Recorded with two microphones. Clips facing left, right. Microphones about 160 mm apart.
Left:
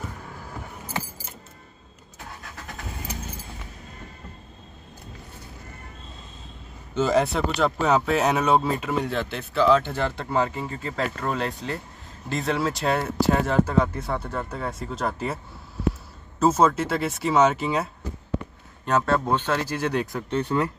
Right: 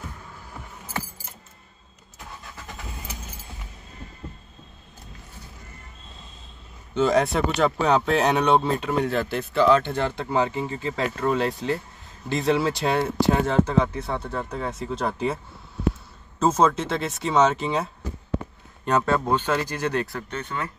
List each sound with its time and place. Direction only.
7.0 s speech: 5° left (ahead or behind)
16.3 s speech: 5° left (ahead or behind)
18.9 s speech: centre (ahead or behind)
19.3 s speech: 10° right (ahead or behind)
19.7 s speech: 5° left (ahead or behind)
20.2 s speech: 30° left (ahead or behind)